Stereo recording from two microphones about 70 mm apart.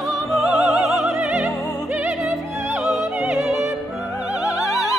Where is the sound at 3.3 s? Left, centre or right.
Centre.